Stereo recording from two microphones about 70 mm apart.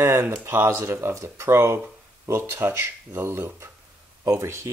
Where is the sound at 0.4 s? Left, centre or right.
Right.